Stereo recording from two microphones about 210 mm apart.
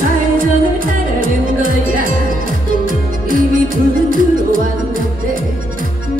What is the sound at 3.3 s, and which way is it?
Music, 40° right (ahead or behind).